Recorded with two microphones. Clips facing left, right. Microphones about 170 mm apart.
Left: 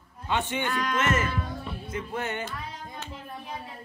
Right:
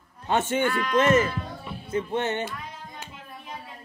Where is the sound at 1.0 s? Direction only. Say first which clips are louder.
Right 9 dB; 30° right (ahead or behind).